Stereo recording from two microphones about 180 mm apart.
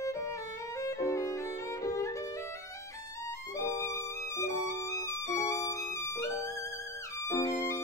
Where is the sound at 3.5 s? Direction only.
15° left (ahead or behind).